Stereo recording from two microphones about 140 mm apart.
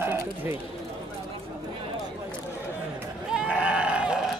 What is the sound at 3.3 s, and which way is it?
Goat, 5° right (ahead or behind).